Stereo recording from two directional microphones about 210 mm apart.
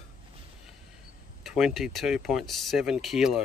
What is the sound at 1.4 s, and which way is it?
Speech, centre (ahead or behind).